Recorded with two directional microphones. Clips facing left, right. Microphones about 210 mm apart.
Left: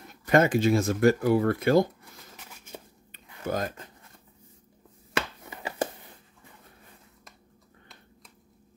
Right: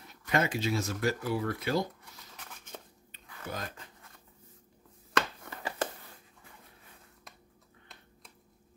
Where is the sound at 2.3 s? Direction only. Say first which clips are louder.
Left 2 dB; 10° left (ahead or behind).